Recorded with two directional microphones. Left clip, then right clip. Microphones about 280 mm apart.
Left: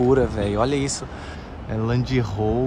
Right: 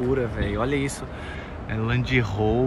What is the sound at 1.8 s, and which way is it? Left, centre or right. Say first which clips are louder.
Speech: even; centre.